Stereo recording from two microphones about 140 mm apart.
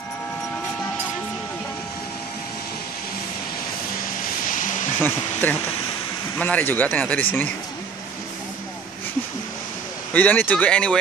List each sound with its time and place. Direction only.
4.2 s vehicle: 70° left (ahead or behind)
5.0 s speech: 15° left (ahead or behind)
10.1 s speech: 10° left (ahead or behind)